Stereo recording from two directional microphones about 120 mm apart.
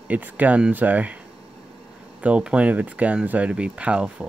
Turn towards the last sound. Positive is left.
turn(degrees=-10)  # may be behind; listen again after turning